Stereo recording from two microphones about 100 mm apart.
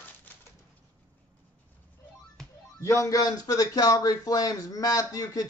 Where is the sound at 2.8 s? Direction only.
30° left (ahead or behind).